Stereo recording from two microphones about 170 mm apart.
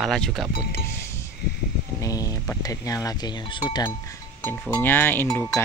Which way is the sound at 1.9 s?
20° left (ahead or behind).